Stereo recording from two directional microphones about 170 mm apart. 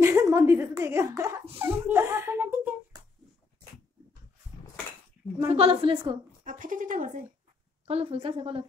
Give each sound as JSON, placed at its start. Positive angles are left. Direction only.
{"t": 0.0, "sound": "a woman's voice", "side_deg": -15}
{"t": 5.5, "sound": "a woman's voice", "side_deg": -35}
{"t": 6.4, "sound": "speech", "side_deg": -50}
{"t": 7.8, "sound": "a woman's voice", "side_deg": -35}